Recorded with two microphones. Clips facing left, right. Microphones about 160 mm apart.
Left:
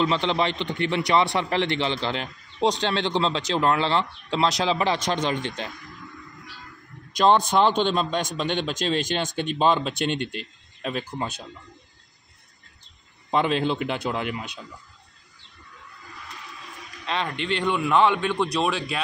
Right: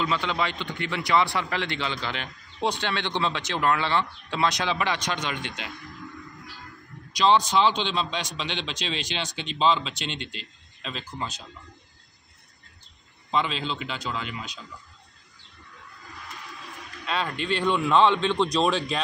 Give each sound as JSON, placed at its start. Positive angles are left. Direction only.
{"t": 0.0, "sound": "a man's voice", "side_deg": 25}
{"t": 7.2, "sound": "a man's voice", "side_deg": 50}
{"t": 13.3, "sound": "a man's voice", "side_deg": 55}
{"t": 17.0, "sound": "speech", "side_deg": 20}